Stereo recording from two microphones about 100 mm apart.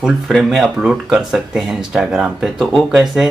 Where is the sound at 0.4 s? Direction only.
Centre (ahead or behind).